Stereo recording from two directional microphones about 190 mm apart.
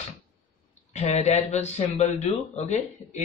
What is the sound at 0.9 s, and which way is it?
Speech, 35° left (ahead or behind).